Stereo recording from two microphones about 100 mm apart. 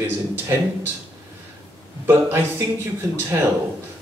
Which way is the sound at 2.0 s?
20° right (ahead or behind).